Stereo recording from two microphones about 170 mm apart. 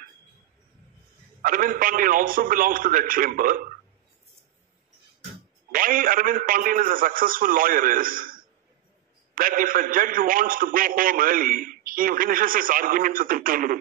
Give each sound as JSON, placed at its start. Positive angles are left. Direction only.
{"t": 1.4, "sound": "a man's voice", "side_deg": -55}
{"t": 5.7, "sound": "a man's voice", "side_deg": -55}